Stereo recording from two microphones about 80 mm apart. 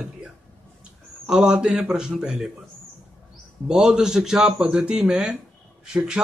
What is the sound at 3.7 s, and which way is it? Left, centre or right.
A man's voice, centre.